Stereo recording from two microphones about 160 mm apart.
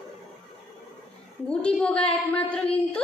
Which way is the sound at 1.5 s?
5° left (ahead or behind).